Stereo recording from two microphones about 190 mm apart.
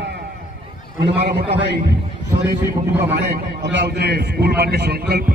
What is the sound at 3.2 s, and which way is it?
A man's voice, 65° right (ahead or behind).